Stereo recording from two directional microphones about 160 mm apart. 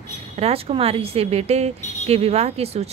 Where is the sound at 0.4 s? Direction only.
40° right (ahead or behind).